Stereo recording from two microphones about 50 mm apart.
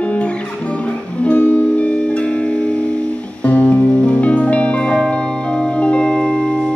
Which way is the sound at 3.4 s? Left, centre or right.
Left.